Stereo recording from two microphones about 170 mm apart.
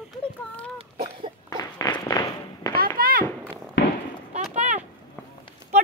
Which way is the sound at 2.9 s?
55° right (ahead or behind).